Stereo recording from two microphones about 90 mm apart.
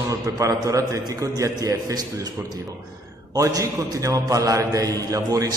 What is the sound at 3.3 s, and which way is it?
A man's voice, 40° right (ahead or behind).